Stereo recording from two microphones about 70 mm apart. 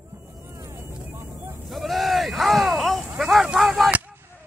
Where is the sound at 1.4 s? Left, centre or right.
Right.